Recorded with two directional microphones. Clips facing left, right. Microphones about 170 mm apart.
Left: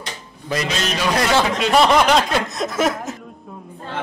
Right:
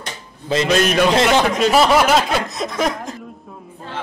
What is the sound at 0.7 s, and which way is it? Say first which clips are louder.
Speech: right 8 dB; 55° right (ahead or behind).